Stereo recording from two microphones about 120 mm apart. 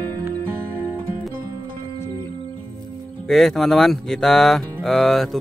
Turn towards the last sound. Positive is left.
turn(degrees=0)  # may be behind; listen again after turning